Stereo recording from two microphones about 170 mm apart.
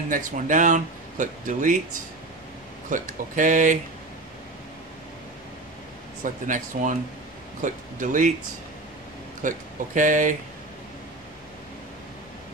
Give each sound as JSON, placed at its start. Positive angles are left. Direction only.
{"t": 0.1, "sound": "speech", "side_deg": -50}
{"t": 2.9, "sound": "speech", "side_deg": -50}
{"t": 6.2, "sound": "speech", "side_deg": -50}
{"t": 9.4, "sound": "speech", "side_deg": -50}